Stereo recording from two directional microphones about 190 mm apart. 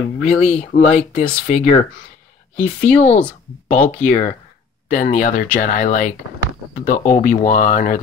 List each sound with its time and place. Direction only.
0.2 s speech: 35° left (ahead or behind)